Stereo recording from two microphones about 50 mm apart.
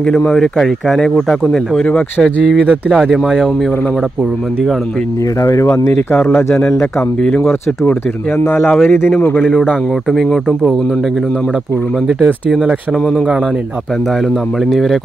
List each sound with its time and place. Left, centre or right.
0.3 s speech: centre
3.1 s speech: centre
5.4 s speech: left
8.4 s a man's voice: left
9.4 s speech: centre
14.7 s speech: centre